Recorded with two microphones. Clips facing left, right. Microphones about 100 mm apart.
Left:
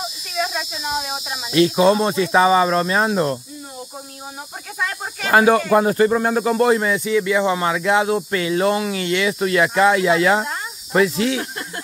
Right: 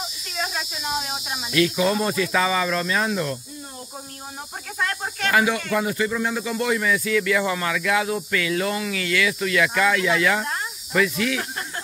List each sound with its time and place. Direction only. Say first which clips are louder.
0.3 s speech: left 5 dB; centre (ahead or behind)
1.5 s speech: left 6 dB; 30° left (ahead or behind)
4.7 s speech: even; 5° left (ahead or behind)
5.3 s speech: left 8 dB; 40° left (ahead or behind)
7.0 s speech: left 3 dB; 20° left (ahead or behind)